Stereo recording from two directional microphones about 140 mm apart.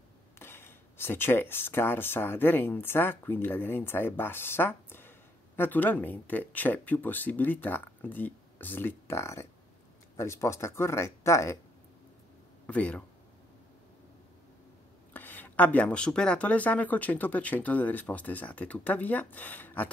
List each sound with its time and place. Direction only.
0.4 s speech: 15° left (ahead or behind)
12.6 s speech: 10° left (ahead or behind)
15.1 s speech: 10° left (ahead or behind)